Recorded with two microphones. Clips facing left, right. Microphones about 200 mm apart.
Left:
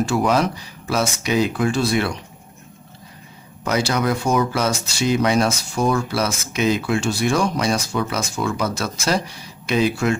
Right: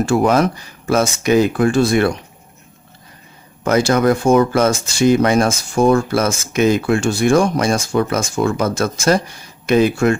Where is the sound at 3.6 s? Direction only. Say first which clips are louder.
Right 7 dB; 50° right (ahead or behind).